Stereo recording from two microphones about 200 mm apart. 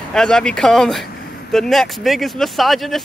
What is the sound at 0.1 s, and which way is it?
Speech, 5° left (ahead or behind).